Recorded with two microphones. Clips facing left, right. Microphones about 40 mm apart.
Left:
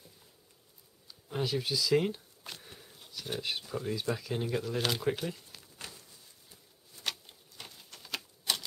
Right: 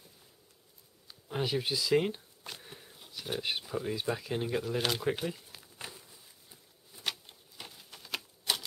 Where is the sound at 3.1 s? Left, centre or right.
Centre.